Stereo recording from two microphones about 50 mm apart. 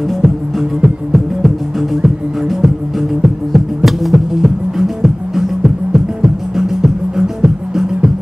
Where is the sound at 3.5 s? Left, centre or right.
Centre.